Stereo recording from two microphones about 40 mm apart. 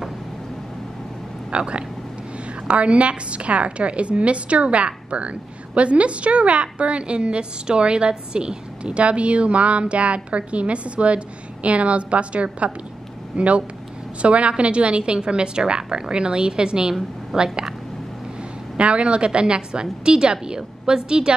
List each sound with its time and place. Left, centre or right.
1.5 s a woman's voice: right
17.3 s speech: centre
18.8 s a woman's voice: right